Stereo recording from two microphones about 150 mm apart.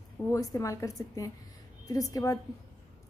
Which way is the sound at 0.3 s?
20° left (ahead or behind).